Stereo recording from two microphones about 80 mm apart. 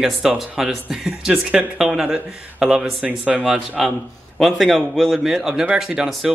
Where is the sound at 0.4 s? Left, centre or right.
Centre.